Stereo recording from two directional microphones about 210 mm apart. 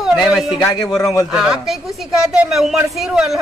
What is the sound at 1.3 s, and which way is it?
A man's voice, 5° right (ahead or behind).